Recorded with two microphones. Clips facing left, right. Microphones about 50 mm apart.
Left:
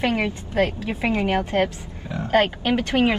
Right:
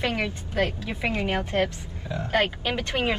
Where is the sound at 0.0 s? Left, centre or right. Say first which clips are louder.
Left 4 dB; left.